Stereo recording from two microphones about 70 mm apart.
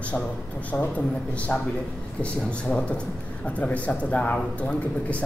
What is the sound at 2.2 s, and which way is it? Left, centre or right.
Speech, centre.